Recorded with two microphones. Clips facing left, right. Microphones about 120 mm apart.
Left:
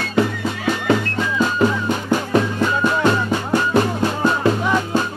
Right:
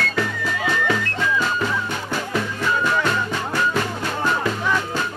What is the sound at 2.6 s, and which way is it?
Music, 25° left (ahead or behind).